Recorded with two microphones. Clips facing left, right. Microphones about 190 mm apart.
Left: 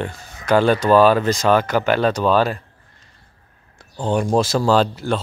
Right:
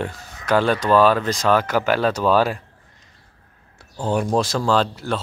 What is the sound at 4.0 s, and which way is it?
Speech, 5° right (ahead or behind).